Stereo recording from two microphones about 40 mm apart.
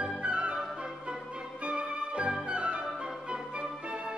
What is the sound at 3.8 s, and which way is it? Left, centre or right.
Organ, right.